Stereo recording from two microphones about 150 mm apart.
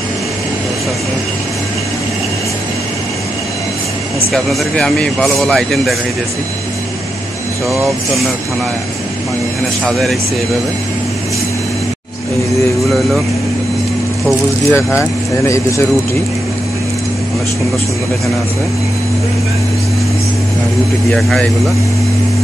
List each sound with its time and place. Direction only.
4.3 s speech: centre (ahead or behind)
9.8 s speech: centre (ahead or behind)
12.8 s speech: centre (ahead or behind)
14.7 s speech: 20° left (ahead or behind)
21.1 s speech: 5° left (ahead or behind)